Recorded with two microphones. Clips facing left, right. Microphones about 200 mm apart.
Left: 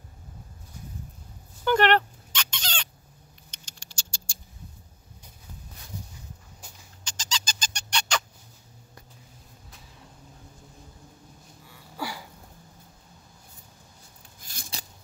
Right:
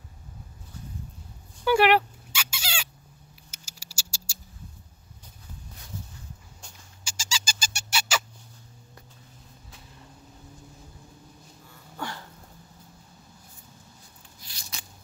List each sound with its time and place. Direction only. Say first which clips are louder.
1.6 s dog: right 1 dB; 10° right (ahead or behind)
3.4 s patter: even; 5° right (ahead or behind)
7.1 s squeak: even; 10° right (ahead or behind)
9.7 s vehicle: right 1 dB; centre (ahead or behind)
11.6 s a sound: left 1 dB; 5° left (ahead or behind)
14.4 s a sound: left 5 dB; 50° left (ahead or behind)